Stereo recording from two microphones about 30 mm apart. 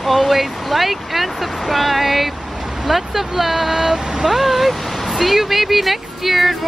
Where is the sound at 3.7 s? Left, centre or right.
Right.